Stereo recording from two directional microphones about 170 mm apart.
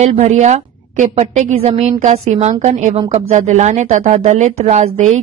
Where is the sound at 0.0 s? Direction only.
40° right (ahead or behind).